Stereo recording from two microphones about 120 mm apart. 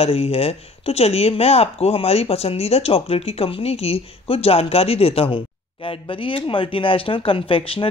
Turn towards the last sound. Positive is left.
turn(degrees=50)  # may be behind; listen again after turning